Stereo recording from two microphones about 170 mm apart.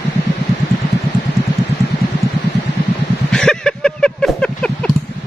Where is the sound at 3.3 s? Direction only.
5° left (ahead or behind).